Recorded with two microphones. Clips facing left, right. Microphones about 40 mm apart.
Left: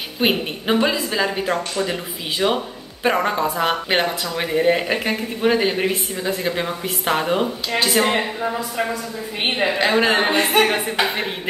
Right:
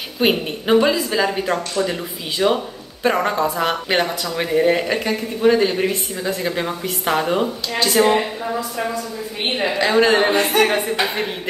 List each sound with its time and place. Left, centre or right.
0.2 s a woman's voice: centre
9.6 s a woman's voice: centre
10.3 s a woman's voice: left
10.7 s a woman's voice: centre